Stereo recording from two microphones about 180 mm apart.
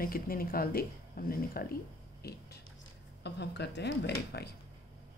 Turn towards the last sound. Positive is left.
turn(degrees=65)  # may be behind; listen again after turning